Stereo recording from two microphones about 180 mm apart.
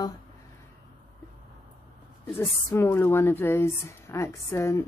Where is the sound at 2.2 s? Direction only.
15° left (ahead or behind).